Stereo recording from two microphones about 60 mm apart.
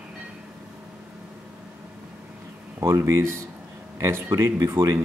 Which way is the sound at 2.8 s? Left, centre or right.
Right.